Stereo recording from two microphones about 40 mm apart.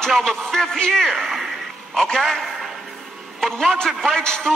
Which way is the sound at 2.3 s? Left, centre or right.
Centre.